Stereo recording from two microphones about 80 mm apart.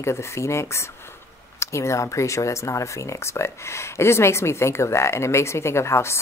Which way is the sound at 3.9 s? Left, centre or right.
Left.